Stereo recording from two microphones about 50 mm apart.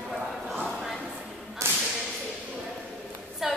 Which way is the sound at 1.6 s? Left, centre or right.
Right.